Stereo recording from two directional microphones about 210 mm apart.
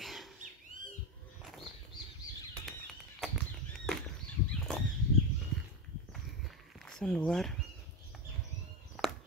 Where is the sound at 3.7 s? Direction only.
5° left (ahead or behind).